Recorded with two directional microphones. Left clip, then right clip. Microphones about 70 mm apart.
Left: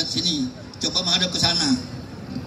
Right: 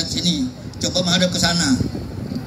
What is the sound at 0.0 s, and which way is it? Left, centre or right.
A man's voice, right.